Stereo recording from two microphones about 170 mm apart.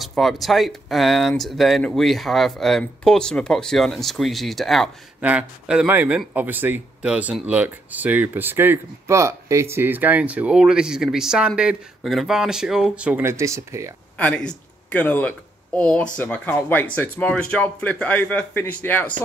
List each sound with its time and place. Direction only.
0.0 s speech: centre (ahead or behind); by 13.9 s 15° right (ahead or behind)
14.1 s speech: 5° left (ahead or behind)